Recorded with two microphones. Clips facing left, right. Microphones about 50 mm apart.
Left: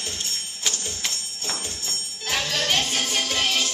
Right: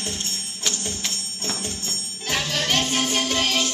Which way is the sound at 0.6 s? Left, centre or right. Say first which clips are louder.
Right 1 dB; centre.